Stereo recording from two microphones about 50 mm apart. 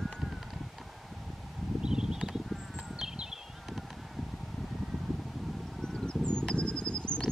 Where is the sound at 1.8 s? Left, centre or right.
Centre.